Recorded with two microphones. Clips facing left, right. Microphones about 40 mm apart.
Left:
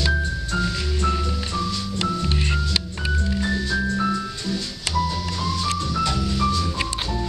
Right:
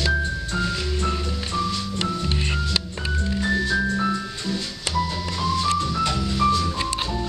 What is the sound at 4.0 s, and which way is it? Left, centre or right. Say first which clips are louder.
Music: left 1 dB; centre.